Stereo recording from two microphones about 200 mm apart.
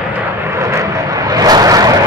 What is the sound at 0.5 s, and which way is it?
Vehicle, 15° right (ahead or behind).